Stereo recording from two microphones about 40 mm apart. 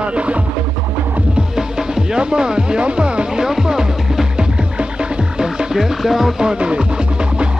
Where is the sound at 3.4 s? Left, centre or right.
Centre.